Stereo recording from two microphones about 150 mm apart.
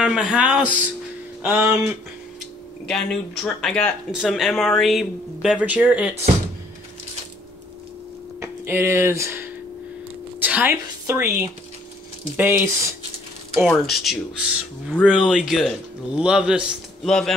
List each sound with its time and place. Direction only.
0.0 s speech: 5° right (ahead or behind)
2.9 s speech: 5° left (ahead or behind)
8.4 s a woman's voice: 15° right (ahead or behind)
13.7 s speech: centre (ahead or behind)